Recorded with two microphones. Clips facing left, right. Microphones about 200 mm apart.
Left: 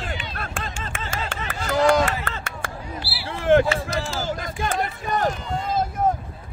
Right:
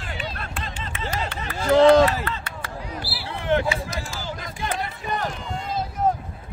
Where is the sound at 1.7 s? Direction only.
25° right (ahead or behind).